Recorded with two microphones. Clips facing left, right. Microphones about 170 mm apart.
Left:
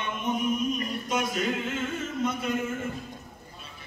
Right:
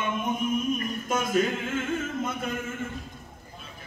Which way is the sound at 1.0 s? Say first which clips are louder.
Right 4 dB; 50° right (ahead or behind).